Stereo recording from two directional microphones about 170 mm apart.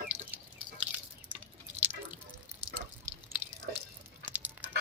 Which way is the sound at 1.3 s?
10° right (ahead or behind).